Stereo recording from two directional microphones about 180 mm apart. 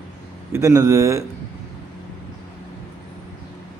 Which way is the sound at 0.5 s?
15° right (ahead or behind).